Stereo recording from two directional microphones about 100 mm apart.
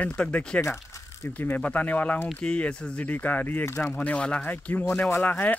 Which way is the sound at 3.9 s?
15° left (ahead or behind).